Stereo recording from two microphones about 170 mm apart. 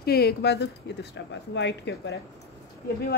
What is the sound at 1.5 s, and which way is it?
Speech, 90° left.